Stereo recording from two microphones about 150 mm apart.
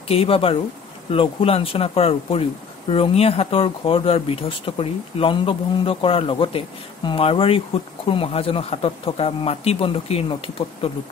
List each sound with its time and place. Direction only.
0.1 s speech: 40° left (ahead or behind)